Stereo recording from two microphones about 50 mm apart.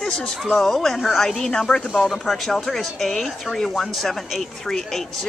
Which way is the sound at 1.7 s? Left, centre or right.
Centre.